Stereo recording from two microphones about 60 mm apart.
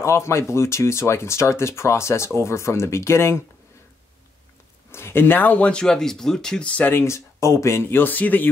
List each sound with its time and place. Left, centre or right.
0.0 s speech: left
4.9 s speech: left; by 6.6 s centre
6.6 s speech: left
6.9 s speech: left